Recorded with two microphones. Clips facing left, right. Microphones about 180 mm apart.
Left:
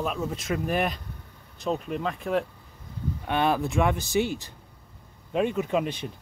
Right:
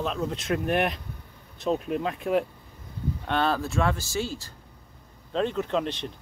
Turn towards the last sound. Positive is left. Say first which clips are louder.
# left 1 dB
turn(degrees=10)  # may be behind; listen again after turning